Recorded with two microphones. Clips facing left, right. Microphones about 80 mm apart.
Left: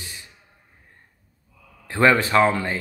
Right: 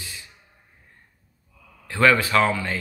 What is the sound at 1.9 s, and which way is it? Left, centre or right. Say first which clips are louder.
Speech: left 1 dB; left.